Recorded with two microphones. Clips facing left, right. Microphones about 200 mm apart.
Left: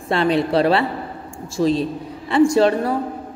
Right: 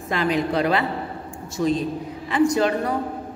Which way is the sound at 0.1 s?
30° left (ahead or behind).